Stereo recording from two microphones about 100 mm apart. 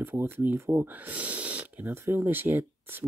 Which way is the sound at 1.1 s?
15° right (ahead or behind).